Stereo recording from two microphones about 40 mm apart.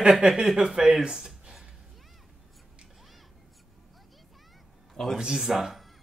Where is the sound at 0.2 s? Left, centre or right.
Centre.